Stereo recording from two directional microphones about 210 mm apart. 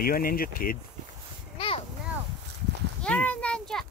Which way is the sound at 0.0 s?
45° left (ahead or behind).